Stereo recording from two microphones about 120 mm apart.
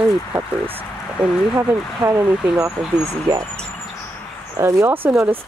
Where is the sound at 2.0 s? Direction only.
20° right (ahead or behind).